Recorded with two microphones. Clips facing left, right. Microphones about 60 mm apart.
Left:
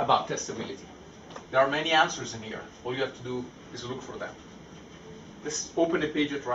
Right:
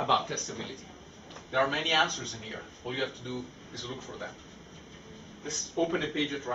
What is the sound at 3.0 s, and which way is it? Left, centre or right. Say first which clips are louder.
Speech: left 3 dB; centre.